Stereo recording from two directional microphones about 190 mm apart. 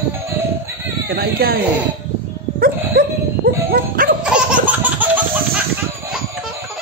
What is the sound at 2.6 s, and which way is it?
Dog, 50° right (ahead or behind).